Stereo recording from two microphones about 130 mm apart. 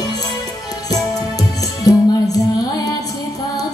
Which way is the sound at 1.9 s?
30° left (ahead or behind).